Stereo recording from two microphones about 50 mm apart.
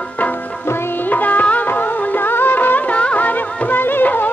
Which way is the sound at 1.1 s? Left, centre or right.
Left.